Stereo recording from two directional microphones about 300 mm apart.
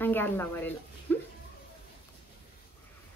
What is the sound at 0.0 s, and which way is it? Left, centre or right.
Speech, centre.